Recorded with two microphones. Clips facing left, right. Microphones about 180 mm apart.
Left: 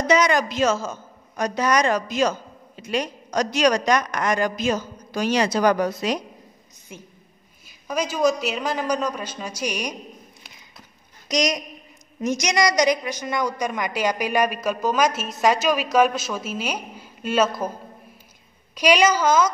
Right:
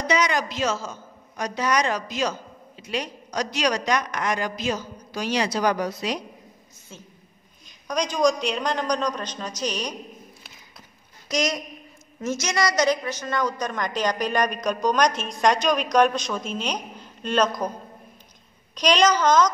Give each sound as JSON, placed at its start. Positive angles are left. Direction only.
{"t": 0.1, "sound": "a man's voice", "side_deg": 50}
{"t": 6.9, "sound": "a woman's voice", "side_deg": 15}
{"t": 11.2, "sound": "a woman's voice", "side_deg": 15}
{"t": 18.8, "sound": "a woman's voice", "side_deg": 10}